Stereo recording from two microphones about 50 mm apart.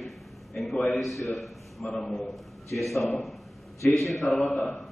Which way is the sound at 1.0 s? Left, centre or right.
Centre.